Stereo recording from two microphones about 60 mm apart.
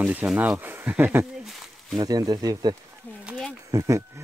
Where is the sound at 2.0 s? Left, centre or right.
Right.